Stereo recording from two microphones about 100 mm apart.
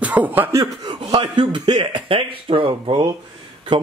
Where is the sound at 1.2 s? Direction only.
55° right (ahead or behind).